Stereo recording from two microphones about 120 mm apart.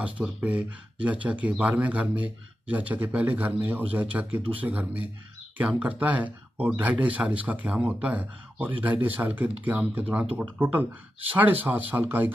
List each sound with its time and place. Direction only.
0.0 s speech: 10° right (ahead or behind)